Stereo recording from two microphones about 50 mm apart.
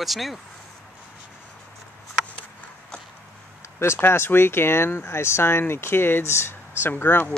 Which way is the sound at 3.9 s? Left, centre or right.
Left.